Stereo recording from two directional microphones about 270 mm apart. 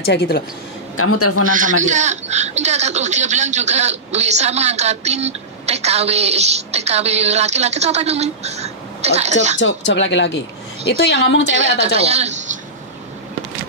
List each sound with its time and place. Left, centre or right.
0.0 s speech: left
0.9 s a man's voice: left
1.5 s speech: right
9.6 s speech: left
11.5 s speech: right